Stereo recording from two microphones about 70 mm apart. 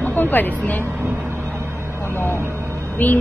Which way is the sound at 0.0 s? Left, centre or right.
Left.